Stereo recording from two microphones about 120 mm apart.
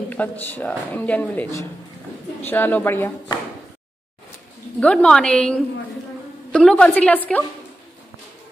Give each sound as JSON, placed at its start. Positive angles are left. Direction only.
{"t": 0.1, "sound": "speech", "side_deg": 15}
{"t": 4.7, "sound": "speech", "side_deg": 10}